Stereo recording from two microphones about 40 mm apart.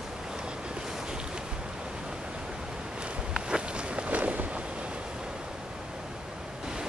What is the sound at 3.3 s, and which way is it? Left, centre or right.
Walk, right.